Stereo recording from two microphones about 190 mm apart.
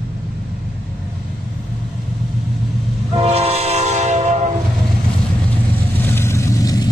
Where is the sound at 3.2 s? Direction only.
30° right (ahead or behind).